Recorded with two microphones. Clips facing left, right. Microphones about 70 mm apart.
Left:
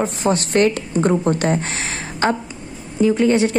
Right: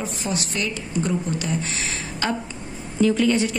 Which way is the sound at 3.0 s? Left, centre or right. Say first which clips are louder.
Left 3 dB; left.